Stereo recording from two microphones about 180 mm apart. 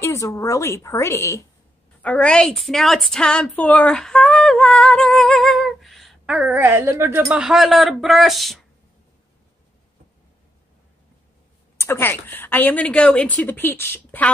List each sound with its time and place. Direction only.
0.0 s a woman's voice: 15° left (ahead or behind); by 6.6 s 5° right (ahead or behind)
6.6 s a woman's voice: 15° right (ahead or behind)
7.2 s speech: 5° right (ahead or behind)
11.8 s a woman's voice: 15° left (ahead or behind)